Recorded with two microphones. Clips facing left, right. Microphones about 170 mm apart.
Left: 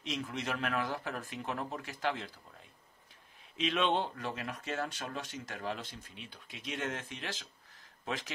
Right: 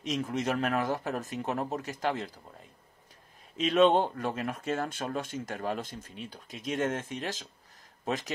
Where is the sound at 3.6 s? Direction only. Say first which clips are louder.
Right 8 dB; 40° right (ahead or behind).